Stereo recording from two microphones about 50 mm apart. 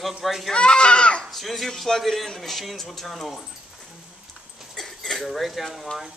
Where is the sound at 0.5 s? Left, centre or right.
Centre.